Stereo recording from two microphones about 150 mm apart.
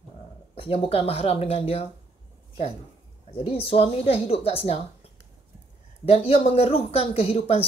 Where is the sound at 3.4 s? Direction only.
40° left (ahead or behind).